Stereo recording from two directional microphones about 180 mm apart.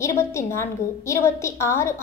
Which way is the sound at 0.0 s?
15° left (ahead or behind).